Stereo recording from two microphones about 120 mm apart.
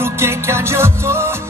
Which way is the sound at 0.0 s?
20° right (ahead or behind).